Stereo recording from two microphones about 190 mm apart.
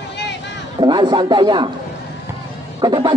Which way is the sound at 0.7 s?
25° right (ahead or behind).